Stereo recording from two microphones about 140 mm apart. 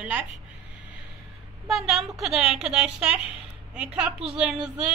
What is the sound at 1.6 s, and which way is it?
A woman's voice, centre (ahead or behind).